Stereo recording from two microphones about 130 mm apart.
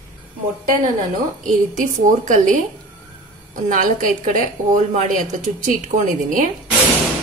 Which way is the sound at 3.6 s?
80° right.